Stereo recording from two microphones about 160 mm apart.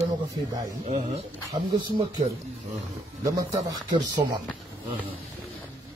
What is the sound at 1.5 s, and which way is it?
Speech, 30° right (ahead or behind).